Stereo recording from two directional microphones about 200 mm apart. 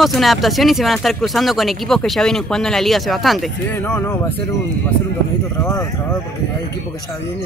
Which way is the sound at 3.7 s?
10° left (ahead or behind).